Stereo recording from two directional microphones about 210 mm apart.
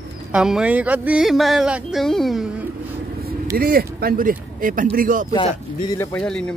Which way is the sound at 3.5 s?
45° right (ahead or behind).